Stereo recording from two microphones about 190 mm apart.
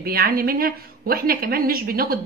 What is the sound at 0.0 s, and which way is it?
A woman's voice, 50° right (ahead or behind).